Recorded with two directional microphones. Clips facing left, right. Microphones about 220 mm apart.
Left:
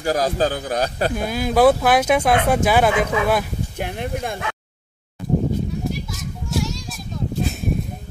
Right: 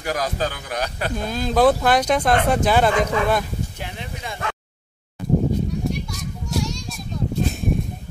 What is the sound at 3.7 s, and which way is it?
Speech, 55° left (ahead or behind).